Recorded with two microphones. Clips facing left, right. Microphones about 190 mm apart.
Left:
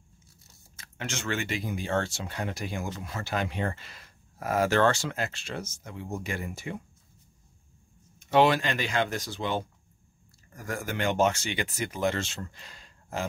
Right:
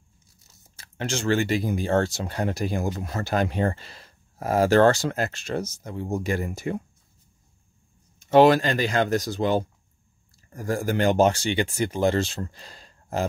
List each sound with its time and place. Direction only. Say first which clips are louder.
0.7 s speech: right 7 dB; 35° right (ahead or behind)
8.2 s speech: right 6 dB; 40° right (ahead or behind)